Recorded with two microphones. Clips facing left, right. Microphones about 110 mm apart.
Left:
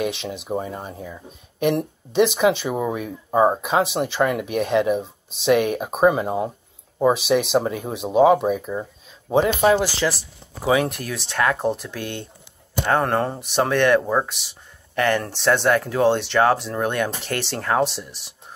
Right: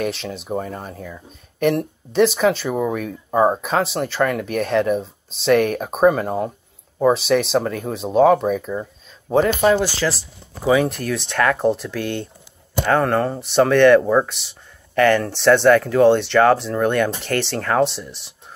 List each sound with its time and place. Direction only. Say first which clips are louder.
0.0 s speech: right 1 dB; 15° left (ahead or behind)
12.0 s speech: right 5 dB; 45° right (ahead or behind)
12.8 s speech: right 2 dB; 25° left (ahead or behind)